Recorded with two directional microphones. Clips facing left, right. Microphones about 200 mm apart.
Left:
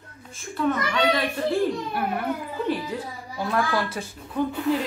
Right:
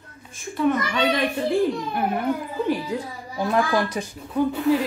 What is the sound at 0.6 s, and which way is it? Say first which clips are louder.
Speech: right 2 dB; 15° right (ahead or behind).